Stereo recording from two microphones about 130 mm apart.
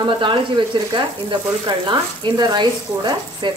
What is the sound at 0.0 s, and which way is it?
Speech, 40° right (ahead or behind).